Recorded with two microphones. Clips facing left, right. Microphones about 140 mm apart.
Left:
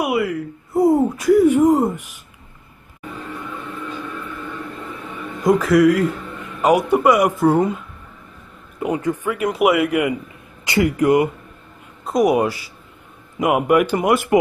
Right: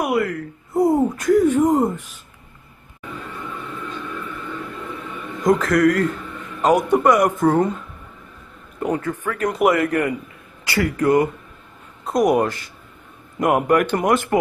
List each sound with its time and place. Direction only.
0.0 s a sound: 5° left (ahead or behind)
5.4 s a man's voice: 5° left (ahead or behind)
12.1 s a man's voice: 5° left (ahead or behind)